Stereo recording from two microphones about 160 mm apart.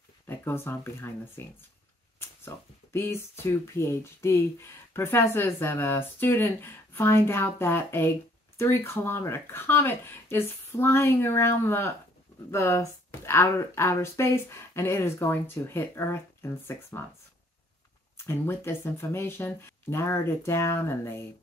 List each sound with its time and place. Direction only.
0.3 s speech: 15° left (ahead or behind)
18.1 s speech: 15° left (ahead or behind)